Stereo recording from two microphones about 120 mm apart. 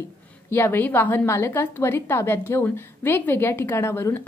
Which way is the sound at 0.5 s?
20° left (ahead or behind).